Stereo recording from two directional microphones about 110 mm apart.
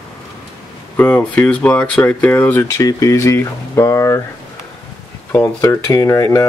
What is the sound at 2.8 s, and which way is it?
Speech, 30° left (ahead or behind).